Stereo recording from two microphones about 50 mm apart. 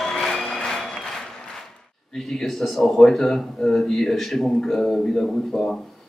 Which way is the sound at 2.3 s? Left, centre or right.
Centre.